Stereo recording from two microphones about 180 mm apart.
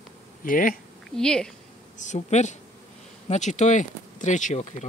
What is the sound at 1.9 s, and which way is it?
Speech, 40° left (ahead or behind).